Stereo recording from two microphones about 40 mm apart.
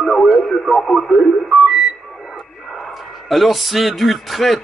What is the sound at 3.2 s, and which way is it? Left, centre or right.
A man's voice, centre.